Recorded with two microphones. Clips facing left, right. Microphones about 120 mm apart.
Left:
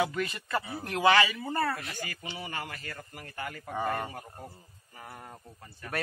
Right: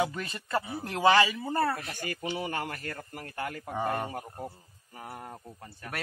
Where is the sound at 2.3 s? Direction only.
55° right (ahead or behind).